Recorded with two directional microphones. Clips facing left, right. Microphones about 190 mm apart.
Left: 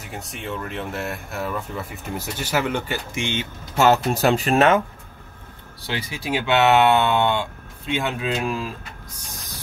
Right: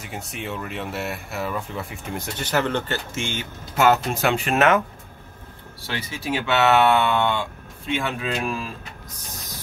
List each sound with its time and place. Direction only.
0.0 s speech: centre (ahead or behind); by 3.4 s 20° left (ahead or behind)
3.7 s speech: 35° left (ahead or behind)
5.8 s speech: 15° left (ahead or behind)